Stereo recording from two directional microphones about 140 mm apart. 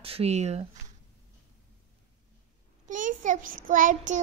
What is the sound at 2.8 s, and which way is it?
Child singing, 65° right (ahead or behind).